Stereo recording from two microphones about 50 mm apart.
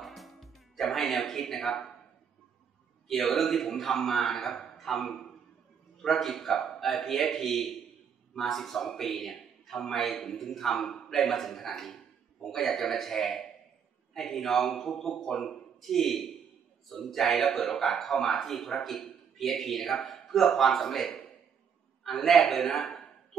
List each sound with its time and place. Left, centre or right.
0.0 s music: centre
3.1 s a man's voice: centre